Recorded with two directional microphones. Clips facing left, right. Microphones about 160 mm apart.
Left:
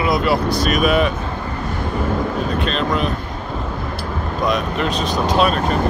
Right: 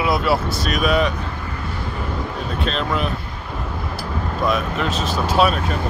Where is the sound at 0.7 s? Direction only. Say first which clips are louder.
Left 1 dB; 50° left (ahead or behind).